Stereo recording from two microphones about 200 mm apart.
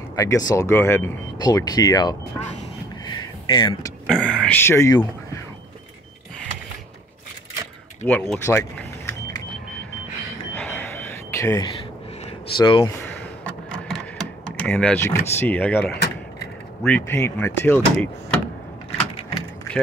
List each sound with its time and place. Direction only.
0.1 s speech: 15° left (ahead or behind)
3.2 s a sound: 25° left (ahead or behind)
4.1 s speech: centre (ahead or behind)
8.0 s keys jangling: 10° left (ahead or behind)
10.5 s a sound: 10° left (ahead or behind)
12.3 s speech: 25° left (ahead or behind)
13.4 s a sound: 5° left (ahead or behind)
15.9 s power windows: 55° left (ahead or behind)
16.8 s speech: 10° left (ahead or behind)